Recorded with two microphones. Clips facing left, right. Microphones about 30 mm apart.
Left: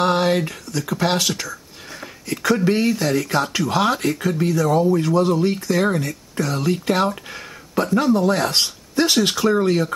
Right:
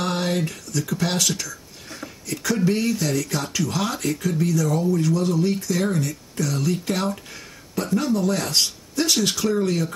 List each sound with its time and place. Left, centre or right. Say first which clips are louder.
0.0 s speech: left 6 dB; left